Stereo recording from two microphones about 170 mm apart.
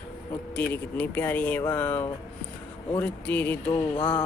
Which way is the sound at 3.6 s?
25° left (ahead or behind).